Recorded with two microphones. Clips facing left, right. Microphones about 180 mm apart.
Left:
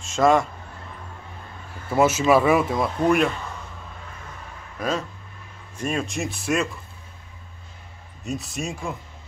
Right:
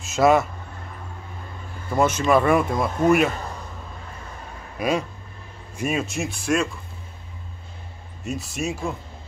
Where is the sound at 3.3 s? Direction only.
35° right (ahead or behind).